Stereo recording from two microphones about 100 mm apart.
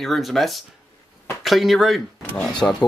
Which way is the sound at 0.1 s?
5° left (ahead or behind).